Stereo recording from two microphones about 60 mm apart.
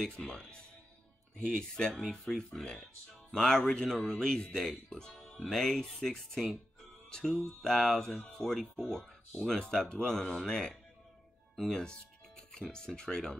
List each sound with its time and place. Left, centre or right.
0.0 s speech: centre
11.5 s music: centre
12.7 s speech: centre